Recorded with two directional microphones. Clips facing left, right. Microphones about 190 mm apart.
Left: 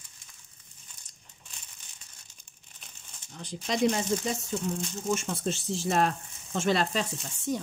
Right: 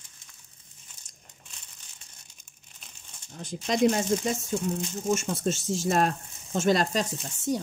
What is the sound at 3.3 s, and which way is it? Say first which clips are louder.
Speech: right 3 dB; 45° right (ahead or behind).